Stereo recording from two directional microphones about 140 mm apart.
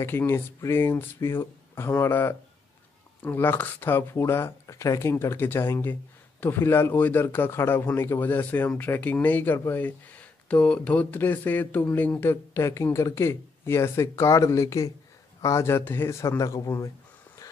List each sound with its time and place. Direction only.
0.0 s a man's voice: 15° left (ahead or behind)